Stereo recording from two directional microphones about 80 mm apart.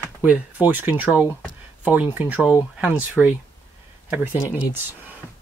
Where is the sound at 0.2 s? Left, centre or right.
Centre.